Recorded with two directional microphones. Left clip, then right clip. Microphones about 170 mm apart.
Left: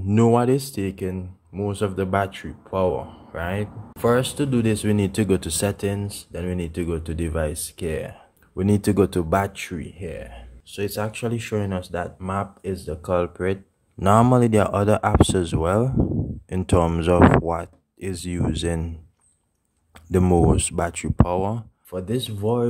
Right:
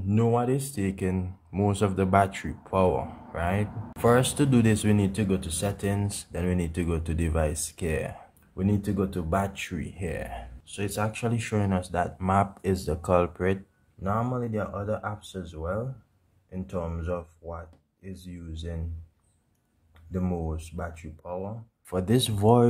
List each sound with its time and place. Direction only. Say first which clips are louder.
0.1 s speech: left 7 dB; 35° left (ahead or behind)
0.7 s speech: left 3 dB; 10° left (ahead or behind)
5.1 s speech: left 7 dB; 25° left (ahead or behind)
5.9 s speech: left 3 dB; 5° left (ahead or behind)
8.5 s speech: left 9 dB; 25° left (ahead or behind); by 10.4 s 5° right (ahead or behind)
10.7 s speech: left 4 dB; 15° left (ahead or behind)
14.0 s speech: left 13 dB; 45° left (ahead or behind)
20.1 s speech: left 14 dB; 45° left (ahead or behind)
21.9 s speech: right 1 dB; 10° right (ahead or behind)